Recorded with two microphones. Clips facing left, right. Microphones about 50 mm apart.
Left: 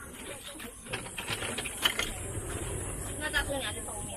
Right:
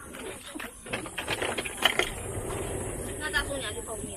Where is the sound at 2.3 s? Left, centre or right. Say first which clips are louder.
Right 5 dB; right.